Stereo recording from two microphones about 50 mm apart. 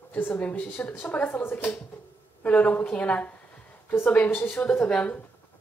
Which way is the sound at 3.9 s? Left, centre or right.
Left.